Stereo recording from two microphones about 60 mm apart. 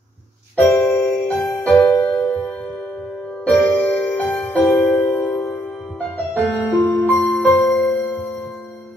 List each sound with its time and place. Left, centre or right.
0.6 s music: left
3.4 s music: left
6.8 s music: left